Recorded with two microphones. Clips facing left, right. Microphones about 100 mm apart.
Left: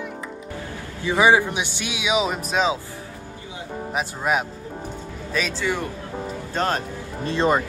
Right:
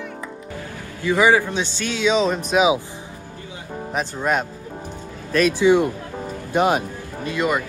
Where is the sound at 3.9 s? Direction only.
5° left (ahead or behind).